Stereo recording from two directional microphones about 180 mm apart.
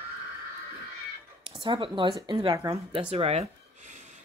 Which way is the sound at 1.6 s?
25° right (ahead or behind).